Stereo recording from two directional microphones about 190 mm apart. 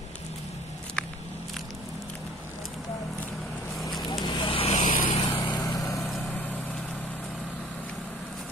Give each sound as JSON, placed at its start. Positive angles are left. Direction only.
{"t": 4.1, "sound": "vehicle", "side_deg": 25}
{"t": 5.0, "sound": "vehicle", "side_deg": 30}
{"t": 5.9, "sound": "vehicle", "side_deg": 0}